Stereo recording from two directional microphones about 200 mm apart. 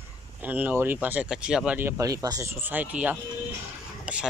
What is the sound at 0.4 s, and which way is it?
Speech, 10° right (ahead or behind).